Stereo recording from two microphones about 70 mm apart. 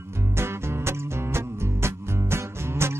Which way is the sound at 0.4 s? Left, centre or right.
Right.